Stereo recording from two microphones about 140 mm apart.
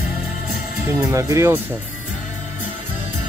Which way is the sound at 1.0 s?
25° right (ahead or behind).